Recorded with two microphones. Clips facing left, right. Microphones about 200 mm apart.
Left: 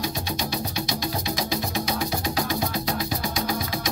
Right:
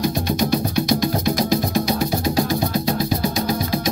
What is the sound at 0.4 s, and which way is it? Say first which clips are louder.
Music: right 9 dB; 50° right (ahead or behind).